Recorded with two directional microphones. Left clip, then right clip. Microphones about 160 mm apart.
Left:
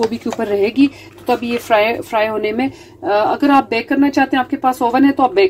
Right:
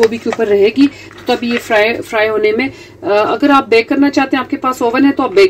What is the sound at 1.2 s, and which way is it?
Speech, centre (ahead or behind).